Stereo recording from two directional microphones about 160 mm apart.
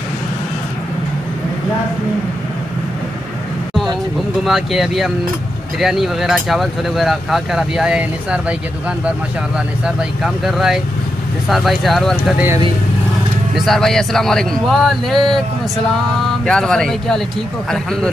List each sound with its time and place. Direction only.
4.5 s speech: centre (ahead or behind)
9.8 s speech: 5° right (ahead or behind)
13.7 s speech: 5° left (ahead or behind)
16.4 s speech: 5° left (ahead or behind)